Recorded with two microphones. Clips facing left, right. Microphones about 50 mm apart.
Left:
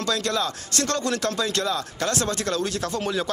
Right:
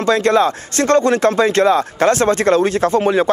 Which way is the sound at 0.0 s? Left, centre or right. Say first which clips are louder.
Right 11 dB; right.